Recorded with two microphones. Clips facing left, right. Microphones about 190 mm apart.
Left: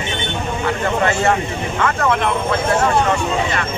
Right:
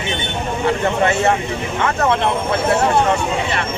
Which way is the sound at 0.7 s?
25° right (ahead or behind).